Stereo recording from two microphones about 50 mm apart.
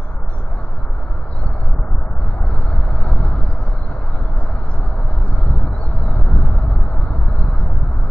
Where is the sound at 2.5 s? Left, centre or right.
Left.